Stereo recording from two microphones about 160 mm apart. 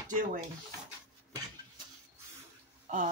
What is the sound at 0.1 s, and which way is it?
Speech, 55° right (ahead or behind).